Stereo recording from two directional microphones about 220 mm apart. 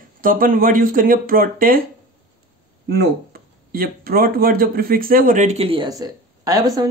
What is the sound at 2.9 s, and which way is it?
Speech, 45° right (ahead or behind).